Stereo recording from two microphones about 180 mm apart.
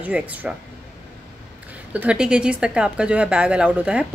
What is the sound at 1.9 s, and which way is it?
A woman's voice, 5° right (ahead or behind).